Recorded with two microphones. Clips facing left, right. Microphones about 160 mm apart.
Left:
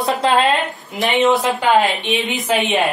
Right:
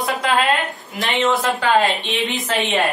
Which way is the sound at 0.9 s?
20° left (ahead or behind).